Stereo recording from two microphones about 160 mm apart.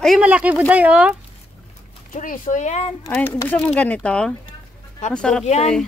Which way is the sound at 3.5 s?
10° left (ahead or behind).